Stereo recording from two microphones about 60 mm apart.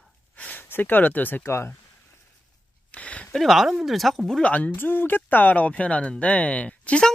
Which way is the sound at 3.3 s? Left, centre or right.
Centre.